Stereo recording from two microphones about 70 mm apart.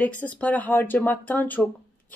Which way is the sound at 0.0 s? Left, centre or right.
Left.